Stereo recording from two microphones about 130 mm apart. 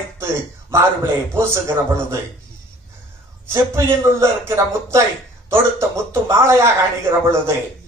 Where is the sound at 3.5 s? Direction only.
20° right (ahead or behind).